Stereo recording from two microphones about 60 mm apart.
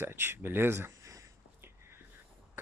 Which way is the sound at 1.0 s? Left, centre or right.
Right.